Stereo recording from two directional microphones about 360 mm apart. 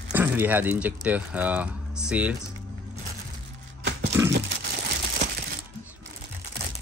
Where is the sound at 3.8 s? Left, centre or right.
Right.